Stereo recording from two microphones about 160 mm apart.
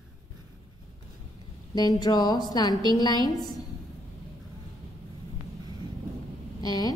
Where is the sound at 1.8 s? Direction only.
25° left (ahead or behind).